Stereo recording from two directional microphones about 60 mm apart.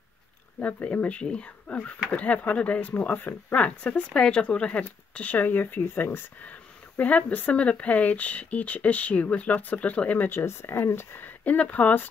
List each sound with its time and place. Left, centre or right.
0.6 s speech: left
3.6 s speech: centre; by 6.2 s left
7.0 s speech: left
10.3 s speech: left